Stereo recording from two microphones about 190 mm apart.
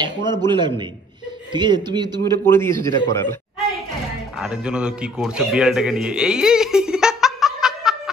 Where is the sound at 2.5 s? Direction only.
15° left (ahead or behind).